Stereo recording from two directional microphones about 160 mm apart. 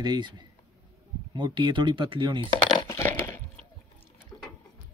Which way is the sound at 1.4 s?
30° right (ahead or behind).